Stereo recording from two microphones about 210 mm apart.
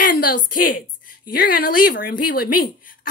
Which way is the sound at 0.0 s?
40° left (ahead or behind).